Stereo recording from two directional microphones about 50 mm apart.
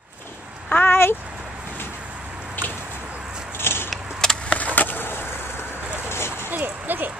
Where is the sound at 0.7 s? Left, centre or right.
Left.